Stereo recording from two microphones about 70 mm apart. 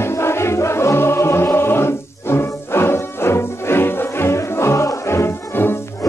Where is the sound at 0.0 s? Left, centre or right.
Left.